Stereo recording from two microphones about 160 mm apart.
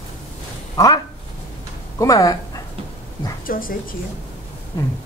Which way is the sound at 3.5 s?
60° left (ahead or behind).